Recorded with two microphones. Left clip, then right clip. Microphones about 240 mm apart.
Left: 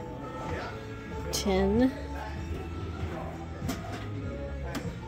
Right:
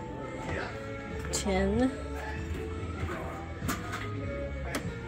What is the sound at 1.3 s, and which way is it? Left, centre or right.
Speech, left.